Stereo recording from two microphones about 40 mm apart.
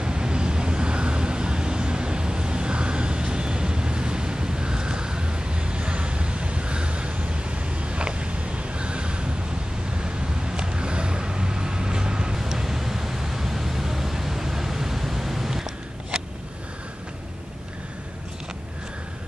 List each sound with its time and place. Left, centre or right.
0.0 s vehicle: right